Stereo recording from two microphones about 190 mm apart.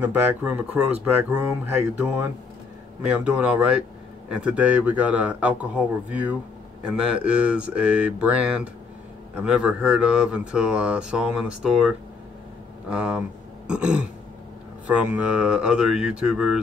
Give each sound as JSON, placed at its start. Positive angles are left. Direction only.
{"t": 0.0, "sound": "a man's voice", "side_deg": -10}
{"t": 12.9, "sound": "speech", "side_deg": -5}
{"t": 13.7, "sound": "burping", "side_deg": -5}
{"t": 14.9, "sound": "speech", "side_deg": -5}